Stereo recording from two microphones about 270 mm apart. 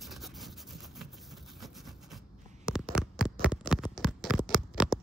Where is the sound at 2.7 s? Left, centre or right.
Centre.